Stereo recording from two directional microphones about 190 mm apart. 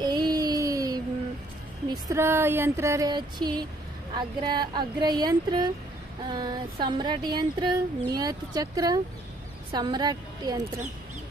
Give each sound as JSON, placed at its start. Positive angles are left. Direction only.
{"t": 0.0, "sound": "a sound", "side_deg": -20}
{"t": 2.0, "sound": "speech", "side_deg": -15}
{"t": 4.1, "sound": "female singing", "side_deg": -25}
{"t": 9.7, "sound": "a woman's voice", "side_deg": -25}